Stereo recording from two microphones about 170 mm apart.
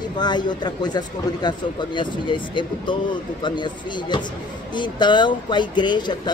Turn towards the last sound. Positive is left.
turn(degrees=25)  # may be behind; listen again after turning